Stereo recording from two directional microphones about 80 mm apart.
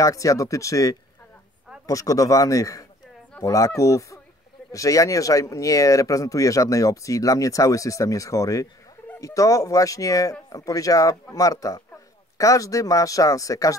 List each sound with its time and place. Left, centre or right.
0.0 s speech: left